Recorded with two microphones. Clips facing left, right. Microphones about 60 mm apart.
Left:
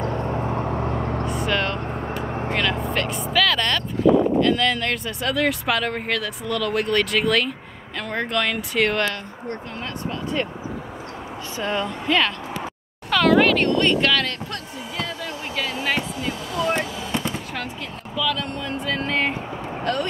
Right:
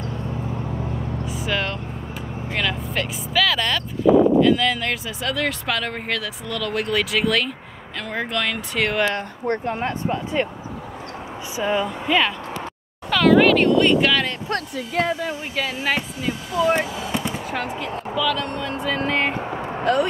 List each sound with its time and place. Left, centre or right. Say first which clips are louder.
0.1 s vehicle: left 4 dB; left
1.4 s vehicle: even; centre
2.0 s vehicle: left 5 dB; left
2.5 s speech: left 1 dB; centre
9.8 s speech: right 5 dB; right
11.5 s speech: right 3 dB; centre
13.1 s a sound: right 2 dB; centre
15.5 s fireworks: even; centre
18.1 s speech: right 1 dB; centre